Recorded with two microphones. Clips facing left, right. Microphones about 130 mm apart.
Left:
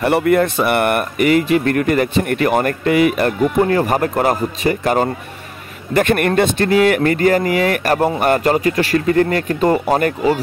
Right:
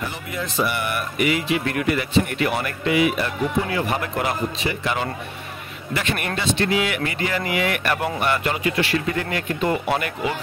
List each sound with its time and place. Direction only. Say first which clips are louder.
0.0 s speech: left 16 dB; 65° left (ahead or behind); by 10.4 s 40° left (ahead or behind)